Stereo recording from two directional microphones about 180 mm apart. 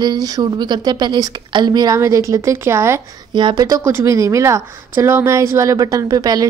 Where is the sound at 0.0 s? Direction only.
20° right (ahead or behind).